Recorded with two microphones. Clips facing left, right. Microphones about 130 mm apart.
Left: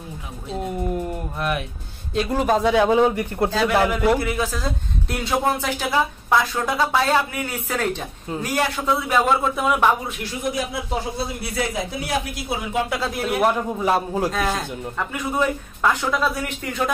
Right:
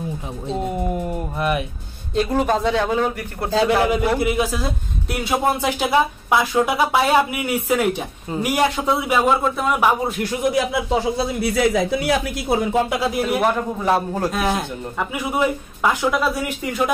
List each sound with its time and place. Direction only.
2.1 s a man's voice: centre (ahead or behind); by 3.4 s 15° left (ahead or behind)
3.5 s speech: 25° right (ahead or behind)
9.1 s a man's voice: centre (ahead or behind)
10.3 s speech: 75° right (ahead or behind)
12.4 s speech: 45° right (ahead or behind)
13.0 s a man's voice: 5° right (ahead or behind)
14.3 s speech: 15° right (ahead or behind)